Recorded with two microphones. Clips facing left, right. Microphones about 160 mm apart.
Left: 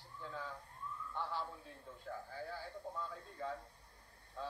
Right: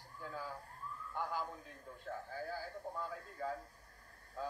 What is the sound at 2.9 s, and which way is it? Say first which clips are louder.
Speech: right 2 dB; 10° right (ahead or behind).